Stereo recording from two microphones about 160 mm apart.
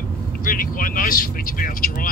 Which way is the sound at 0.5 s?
60° left (ahead or behind).